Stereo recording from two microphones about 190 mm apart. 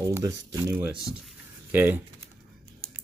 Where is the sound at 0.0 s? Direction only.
15° right (ahead or behind).